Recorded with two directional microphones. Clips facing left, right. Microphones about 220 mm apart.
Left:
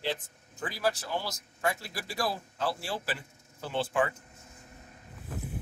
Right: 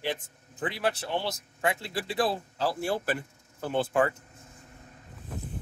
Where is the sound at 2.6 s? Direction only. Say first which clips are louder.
Right 5 dB; 50° right (ahead or behind).